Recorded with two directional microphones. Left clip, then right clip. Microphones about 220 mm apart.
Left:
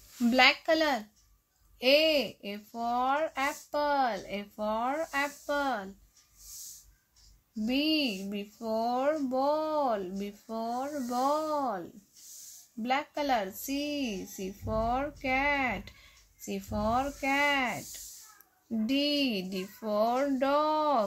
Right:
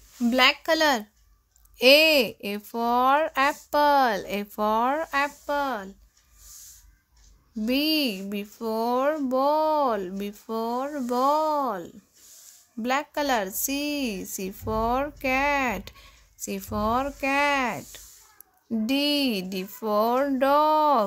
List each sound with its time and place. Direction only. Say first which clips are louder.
0.2 s speech: right 3 dB; 15° right (ahead or behind)
0.7 s speech: right 5 dB; 30° right (ahead or behind)
7.6 s speech: right 5 dB; 35° right (ahead or behind)
16.3 s a sound: right 5 dB; 30° right (ahead or behind)